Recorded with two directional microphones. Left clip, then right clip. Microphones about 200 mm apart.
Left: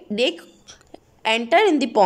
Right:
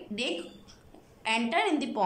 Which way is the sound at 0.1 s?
45° left (ahead or behind).